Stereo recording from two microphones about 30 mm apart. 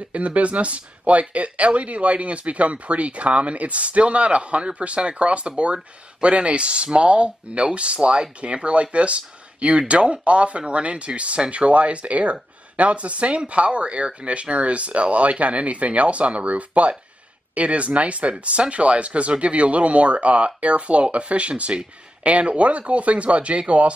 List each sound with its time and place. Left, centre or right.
0.1 s speech: right